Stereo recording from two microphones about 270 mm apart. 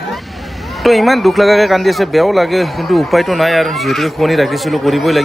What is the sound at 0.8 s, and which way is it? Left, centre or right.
Speech, centre.